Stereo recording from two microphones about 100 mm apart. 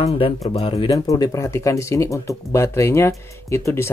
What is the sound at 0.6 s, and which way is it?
Speech, 75° left (ahead or behind).